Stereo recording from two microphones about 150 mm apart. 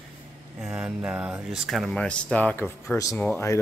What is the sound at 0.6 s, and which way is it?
Speech, 5° right (ahead or behind).